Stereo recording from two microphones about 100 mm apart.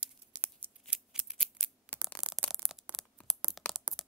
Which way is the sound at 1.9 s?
15° left (ahead or behind).